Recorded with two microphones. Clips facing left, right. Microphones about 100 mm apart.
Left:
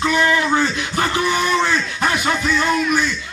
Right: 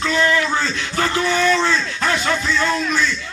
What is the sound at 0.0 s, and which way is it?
A man's voice, 20° left (ahead or behind).